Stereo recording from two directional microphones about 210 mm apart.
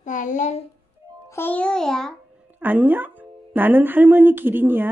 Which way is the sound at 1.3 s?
10° left (ahead or behind).